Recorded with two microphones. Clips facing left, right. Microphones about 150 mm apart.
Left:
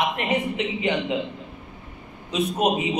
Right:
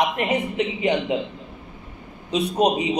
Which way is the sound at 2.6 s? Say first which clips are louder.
Right 2 dB; 35° right (ahead or behind).